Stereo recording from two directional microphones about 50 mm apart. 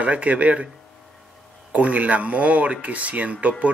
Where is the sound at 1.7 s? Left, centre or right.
Right.